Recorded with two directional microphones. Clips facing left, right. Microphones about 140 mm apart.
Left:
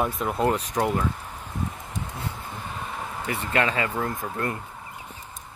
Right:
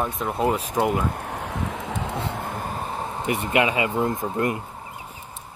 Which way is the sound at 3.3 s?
15° right (ahead or behind).